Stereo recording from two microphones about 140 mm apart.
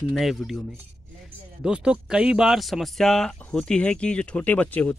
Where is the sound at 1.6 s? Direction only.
5° right (ahead or behind).